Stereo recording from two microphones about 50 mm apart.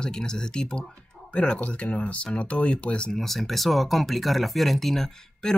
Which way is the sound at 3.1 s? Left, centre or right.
Centre.